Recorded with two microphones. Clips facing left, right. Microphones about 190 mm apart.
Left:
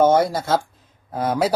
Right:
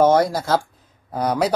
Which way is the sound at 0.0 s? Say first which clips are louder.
Even; centre (ahead or behind).